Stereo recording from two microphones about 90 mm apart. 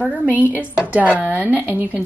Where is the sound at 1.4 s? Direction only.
20° right (ahead or behind).